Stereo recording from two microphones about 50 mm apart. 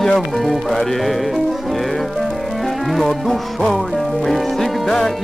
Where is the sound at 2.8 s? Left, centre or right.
Centre.